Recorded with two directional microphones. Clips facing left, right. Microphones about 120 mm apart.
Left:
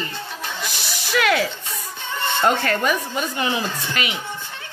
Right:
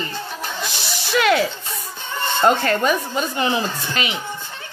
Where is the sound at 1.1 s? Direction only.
30° right (ahead or behind).